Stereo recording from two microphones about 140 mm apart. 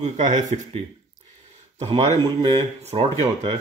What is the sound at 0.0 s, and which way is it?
Speech, 65° right (ahead or behind).